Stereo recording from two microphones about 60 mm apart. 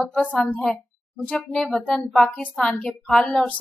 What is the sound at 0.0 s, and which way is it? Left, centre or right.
A woman's voice, centre.